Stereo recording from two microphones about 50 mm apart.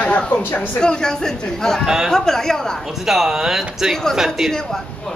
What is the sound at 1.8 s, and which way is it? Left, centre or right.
Speech, centre.